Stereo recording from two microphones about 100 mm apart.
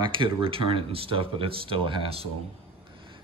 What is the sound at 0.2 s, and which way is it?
Speech, 65° right (ahead or behind).